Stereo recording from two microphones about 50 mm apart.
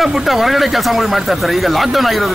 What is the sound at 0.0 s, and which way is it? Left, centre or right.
A man's voice, centre.